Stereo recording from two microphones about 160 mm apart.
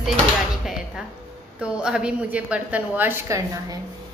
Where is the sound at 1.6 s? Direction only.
5° right (ahead or behind).